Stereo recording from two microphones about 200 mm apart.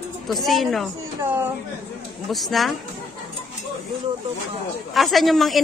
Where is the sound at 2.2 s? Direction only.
Centre (ahead or behind).